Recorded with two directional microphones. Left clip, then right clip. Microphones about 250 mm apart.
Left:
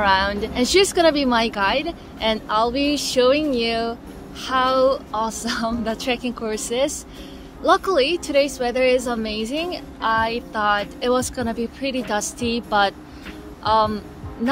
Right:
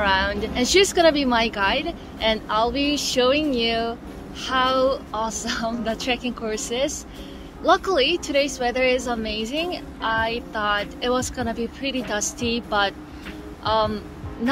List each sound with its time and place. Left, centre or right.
0.0 s a woman's voice: centre